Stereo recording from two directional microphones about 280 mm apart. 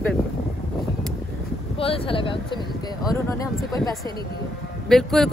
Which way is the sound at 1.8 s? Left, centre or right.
Centre.